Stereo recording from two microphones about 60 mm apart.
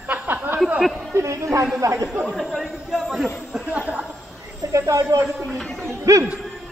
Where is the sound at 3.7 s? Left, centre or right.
Right.